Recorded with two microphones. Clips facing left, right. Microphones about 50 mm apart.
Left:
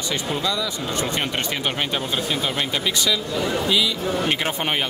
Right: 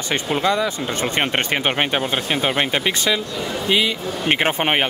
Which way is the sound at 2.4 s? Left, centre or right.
Right.